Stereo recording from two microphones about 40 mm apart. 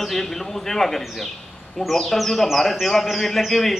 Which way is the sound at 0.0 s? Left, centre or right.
Centre.